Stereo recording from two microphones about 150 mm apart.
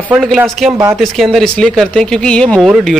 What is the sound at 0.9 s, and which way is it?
Speech, centre (ahead or behind).